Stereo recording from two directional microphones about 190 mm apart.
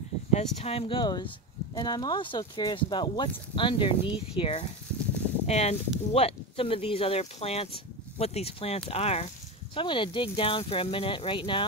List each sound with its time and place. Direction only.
0.3 s speech: 35° left (ahead or behind)